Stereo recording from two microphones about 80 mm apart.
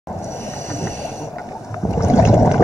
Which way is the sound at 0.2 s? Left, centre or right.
Left.